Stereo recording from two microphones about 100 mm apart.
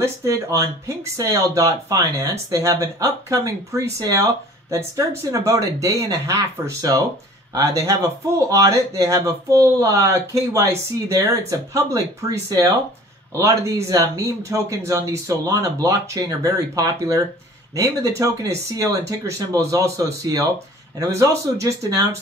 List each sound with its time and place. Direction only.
0.0 s speech: 30° right (ahead or behind)